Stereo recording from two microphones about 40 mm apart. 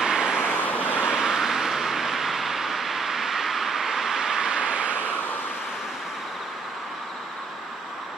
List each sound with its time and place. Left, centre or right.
0.0 s vehicle: centre
0.5 s vehicle: left
1.1 s vehicle: centre; by 5.1 s right